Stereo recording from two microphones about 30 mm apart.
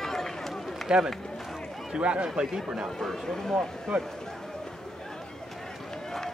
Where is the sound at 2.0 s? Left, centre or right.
Right.